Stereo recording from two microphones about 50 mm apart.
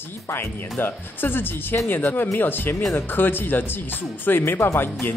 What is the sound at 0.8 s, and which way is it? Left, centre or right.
Speech, left.